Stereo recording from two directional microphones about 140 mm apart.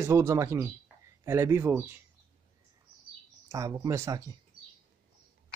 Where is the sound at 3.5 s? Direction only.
25° right (ahead or behind).